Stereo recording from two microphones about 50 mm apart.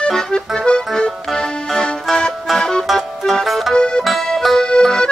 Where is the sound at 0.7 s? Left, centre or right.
Centre.